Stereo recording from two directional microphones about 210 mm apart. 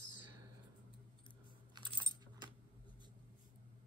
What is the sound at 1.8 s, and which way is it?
Keys jangling, 20° right (ahead or behind).